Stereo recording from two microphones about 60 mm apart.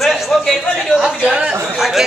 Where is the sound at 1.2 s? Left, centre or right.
Centre.